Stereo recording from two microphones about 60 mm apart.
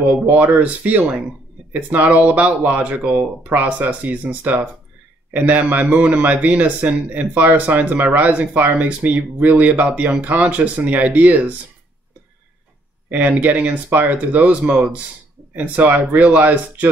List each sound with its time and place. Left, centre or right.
0.3 s a man's voice: right
13.1 s a man's voice: right